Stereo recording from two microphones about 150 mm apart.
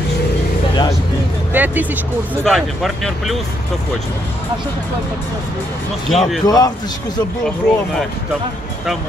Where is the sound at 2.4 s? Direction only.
Centre (ahead or behind).